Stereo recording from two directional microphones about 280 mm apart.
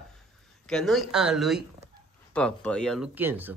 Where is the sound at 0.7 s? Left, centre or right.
Centre.